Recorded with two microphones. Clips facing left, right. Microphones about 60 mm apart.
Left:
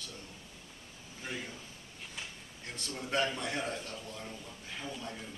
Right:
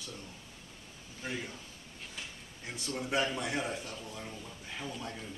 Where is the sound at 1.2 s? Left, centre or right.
Centre.